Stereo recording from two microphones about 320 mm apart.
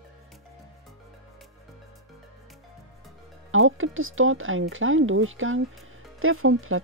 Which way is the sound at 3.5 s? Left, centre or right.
Right.